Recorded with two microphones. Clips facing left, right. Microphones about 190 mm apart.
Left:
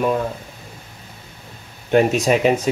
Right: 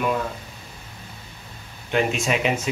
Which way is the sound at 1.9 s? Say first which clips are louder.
Left 7 dB; 45° left (ahead or behind).